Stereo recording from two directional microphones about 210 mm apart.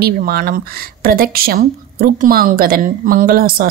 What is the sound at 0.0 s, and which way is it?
A woman's voice, 45° right (ahead or behind).